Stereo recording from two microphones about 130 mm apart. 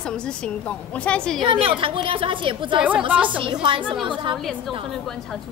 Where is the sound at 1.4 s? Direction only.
45° right (ahead or behind).